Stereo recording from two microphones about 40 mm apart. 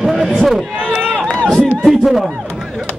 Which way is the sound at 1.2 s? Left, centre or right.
Centre.